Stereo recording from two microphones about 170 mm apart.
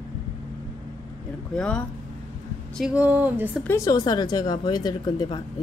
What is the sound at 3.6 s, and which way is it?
A woman's voice, 20° left (ahead or behind).